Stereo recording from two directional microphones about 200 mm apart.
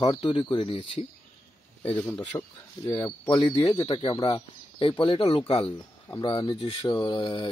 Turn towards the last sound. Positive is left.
turn(degrees=25)  # may be behind; listen again after turning